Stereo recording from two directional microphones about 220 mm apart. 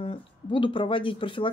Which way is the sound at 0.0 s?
25° left (ahead or behind).